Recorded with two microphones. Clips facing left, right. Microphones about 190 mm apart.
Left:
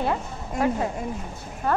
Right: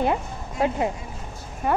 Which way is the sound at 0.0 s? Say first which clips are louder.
Right 2 dB; 20° right (ahead or behind).